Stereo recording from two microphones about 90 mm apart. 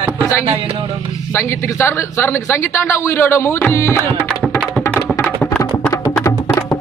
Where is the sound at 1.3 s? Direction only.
25° left (ahead or behind).